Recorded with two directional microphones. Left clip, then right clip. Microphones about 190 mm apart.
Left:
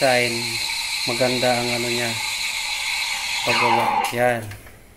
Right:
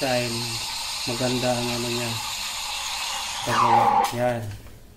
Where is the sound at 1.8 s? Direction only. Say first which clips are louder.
Left 5 dB; 20° right (ahead or behind).